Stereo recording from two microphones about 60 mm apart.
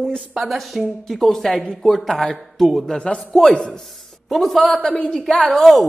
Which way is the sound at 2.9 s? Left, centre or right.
Centre.